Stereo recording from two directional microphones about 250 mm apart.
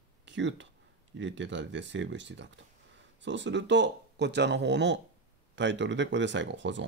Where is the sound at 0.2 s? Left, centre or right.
Right.